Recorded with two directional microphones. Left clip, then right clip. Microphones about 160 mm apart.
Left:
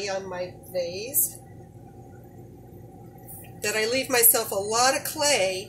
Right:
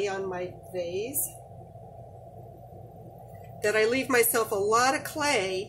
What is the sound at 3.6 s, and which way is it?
Speech, 35° right (ahead or behind).